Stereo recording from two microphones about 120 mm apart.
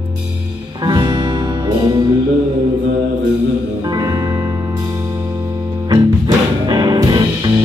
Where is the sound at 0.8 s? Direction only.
35° right (ahead or behind).